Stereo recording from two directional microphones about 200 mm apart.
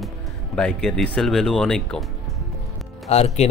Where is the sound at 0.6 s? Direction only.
5° left (ahead or behind).